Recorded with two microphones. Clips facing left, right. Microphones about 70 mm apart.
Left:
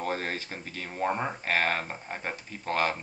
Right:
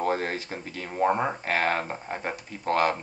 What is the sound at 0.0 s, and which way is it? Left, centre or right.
Speech, centre.